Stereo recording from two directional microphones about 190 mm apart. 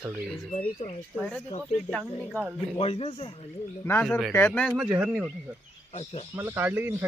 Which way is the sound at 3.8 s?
10° left (ahead or behind).